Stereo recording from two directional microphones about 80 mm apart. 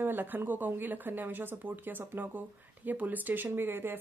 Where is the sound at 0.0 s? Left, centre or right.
Right.